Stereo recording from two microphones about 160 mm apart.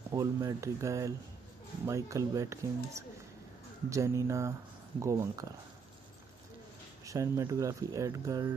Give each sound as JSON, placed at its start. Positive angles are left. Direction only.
{"t": 0.1, "sound": "speech", "side_deg": -20}
{"t": 7.1, "sound": "speech", "side_deg": -20}